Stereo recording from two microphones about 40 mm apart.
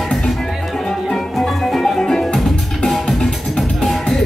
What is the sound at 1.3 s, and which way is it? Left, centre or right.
Music, centre.